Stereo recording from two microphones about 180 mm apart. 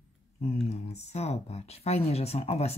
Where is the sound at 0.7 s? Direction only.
35° left (ahead or behind).